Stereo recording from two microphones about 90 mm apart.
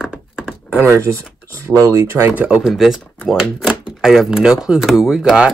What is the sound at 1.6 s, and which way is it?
Speech, 35° right (ahead or behind).